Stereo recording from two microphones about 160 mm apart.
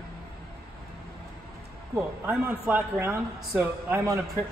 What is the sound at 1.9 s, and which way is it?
Speech, 15° right (ahead or behind).